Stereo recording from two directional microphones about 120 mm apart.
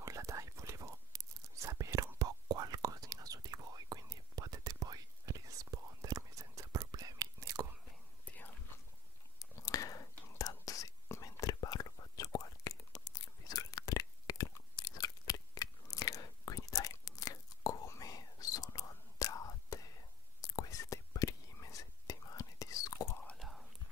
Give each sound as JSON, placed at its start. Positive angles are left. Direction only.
{"t": 0.0, "sound": "whispering", "side_deg": -25}
{"t": 9.4, "sound": "whispering", "side_deg": 30}
{"t": 23.2, "sound": "whispering", "side_deg": 5}